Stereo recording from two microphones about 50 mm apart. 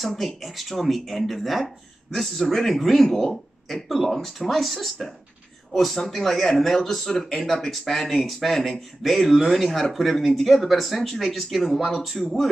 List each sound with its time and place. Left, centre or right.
0.0 s speech: centre